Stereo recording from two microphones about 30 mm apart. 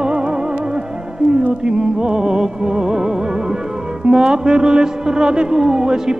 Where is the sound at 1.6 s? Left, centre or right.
Right.